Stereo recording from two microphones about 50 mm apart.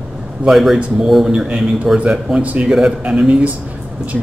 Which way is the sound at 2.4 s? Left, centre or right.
Right.